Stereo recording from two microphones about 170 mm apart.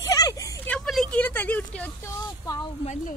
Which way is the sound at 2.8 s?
45° left (ahead or behind).